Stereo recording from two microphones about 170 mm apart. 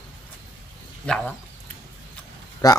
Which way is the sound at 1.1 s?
5° left (ahead or behind).